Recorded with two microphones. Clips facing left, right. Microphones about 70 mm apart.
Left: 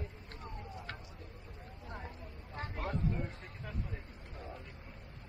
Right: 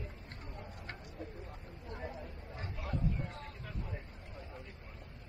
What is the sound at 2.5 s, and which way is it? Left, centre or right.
Vehicle, left.